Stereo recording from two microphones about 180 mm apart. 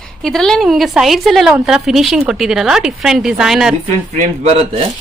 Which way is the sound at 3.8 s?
35° right (ahead or behind).